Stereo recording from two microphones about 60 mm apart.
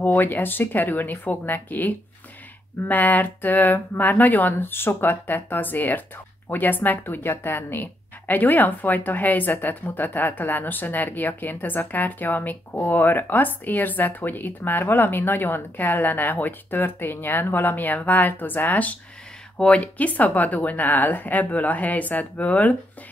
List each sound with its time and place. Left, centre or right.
0.0 s a woman's voice: left